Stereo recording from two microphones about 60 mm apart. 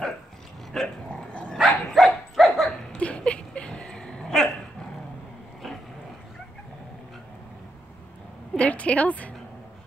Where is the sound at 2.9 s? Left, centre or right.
Centre.